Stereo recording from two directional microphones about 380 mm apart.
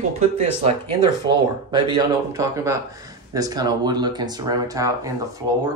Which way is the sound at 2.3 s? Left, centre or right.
Centre.